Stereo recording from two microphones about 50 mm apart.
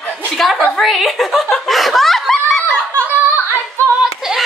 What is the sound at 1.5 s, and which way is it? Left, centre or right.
Chuckle, centre.